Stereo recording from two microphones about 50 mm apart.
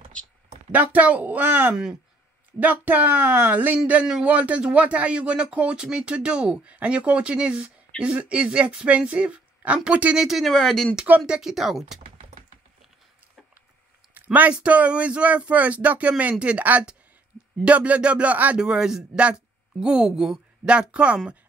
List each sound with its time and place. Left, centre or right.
0.7 s speech: right
1.4 s speech: right
10.1 s speech: centre
10.5 s speech: centre
11.2 s a woman's voice: centre
11.5 s speech: centre
14.1 s a sound: right
14.5 s speech: right
18.6 s a woman's voice: centre